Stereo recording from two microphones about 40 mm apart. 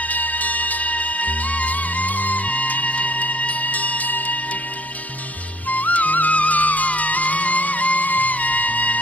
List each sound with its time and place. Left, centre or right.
0.1 s music: left
5.7 s music: left